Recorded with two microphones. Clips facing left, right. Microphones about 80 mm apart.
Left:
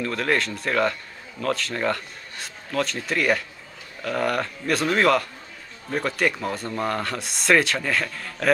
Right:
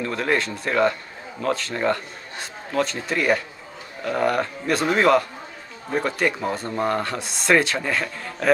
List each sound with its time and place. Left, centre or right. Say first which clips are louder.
0.0 s a man's voice: right 1 dB; centre